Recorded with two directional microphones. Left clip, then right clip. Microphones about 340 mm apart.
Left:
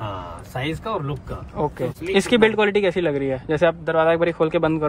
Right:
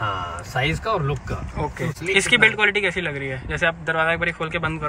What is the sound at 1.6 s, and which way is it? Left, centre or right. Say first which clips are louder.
Speech: left 4 dB; centre.